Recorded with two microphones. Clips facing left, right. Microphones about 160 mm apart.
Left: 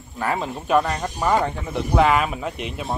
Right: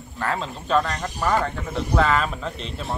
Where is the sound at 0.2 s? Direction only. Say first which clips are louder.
Left 2 dB; 15° left (ahead or behind).